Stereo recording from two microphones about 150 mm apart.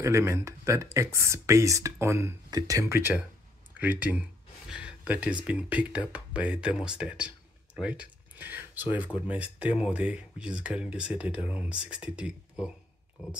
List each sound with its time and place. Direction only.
0.0 s speech: 20° right (ahead or behind)